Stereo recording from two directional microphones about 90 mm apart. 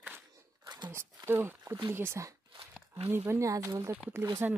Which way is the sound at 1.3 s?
25° right (ahead or behind).